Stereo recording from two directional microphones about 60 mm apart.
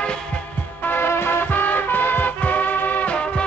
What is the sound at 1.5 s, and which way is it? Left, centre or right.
Music, left.